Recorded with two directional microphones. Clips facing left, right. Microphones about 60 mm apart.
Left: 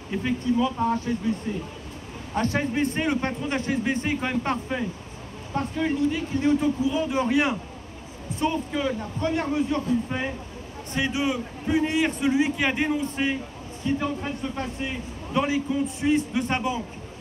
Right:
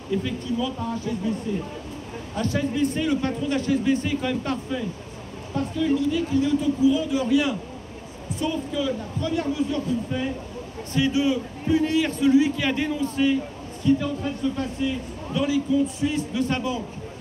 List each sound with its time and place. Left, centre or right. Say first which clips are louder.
0.1 s a man's voice: left 2 dB; left